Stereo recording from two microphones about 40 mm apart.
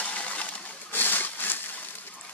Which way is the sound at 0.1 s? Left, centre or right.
Left.